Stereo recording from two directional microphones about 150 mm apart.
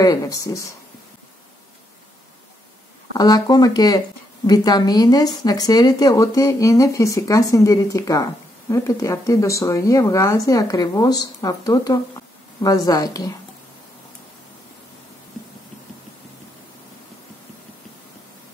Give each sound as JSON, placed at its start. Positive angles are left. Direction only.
{"t": 0.0, "sound": "speech", "side_deg": 25}
{"t": 3.2, "sound": "speech", "side_deg": 25}